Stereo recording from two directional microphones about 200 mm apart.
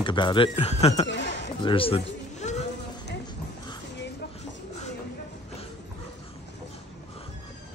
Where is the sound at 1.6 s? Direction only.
25° left (ahead or behind).